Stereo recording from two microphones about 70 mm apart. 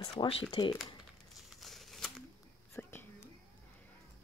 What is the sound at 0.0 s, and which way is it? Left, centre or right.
Speech, left.